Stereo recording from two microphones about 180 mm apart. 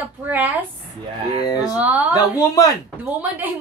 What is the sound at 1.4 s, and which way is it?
Speech, 20° left (ahead or behind).